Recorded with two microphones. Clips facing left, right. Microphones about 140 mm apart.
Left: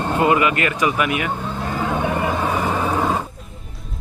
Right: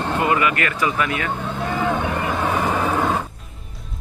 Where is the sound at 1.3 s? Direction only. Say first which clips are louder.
Right 1 dB; centre (ahead or behind).